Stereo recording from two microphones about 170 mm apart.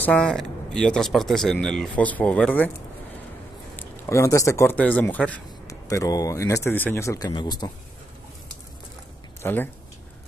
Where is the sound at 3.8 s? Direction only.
15° left (ahead or behind).